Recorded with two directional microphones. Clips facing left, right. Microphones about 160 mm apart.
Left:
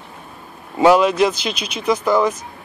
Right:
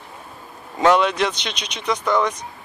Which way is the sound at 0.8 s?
10° left (ahead or behind).